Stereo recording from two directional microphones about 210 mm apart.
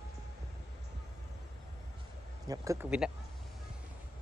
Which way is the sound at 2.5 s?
15° right (ahead or behind).